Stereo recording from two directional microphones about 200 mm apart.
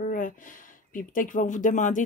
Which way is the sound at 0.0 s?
40° left (ahead or behind).